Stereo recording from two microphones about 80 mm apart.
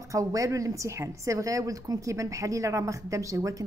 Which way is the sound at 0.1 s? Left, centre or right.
Right.